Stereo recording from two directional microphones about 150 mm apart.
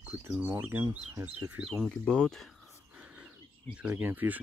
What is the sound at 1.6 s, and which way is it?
Speech, centre (ahead or behind).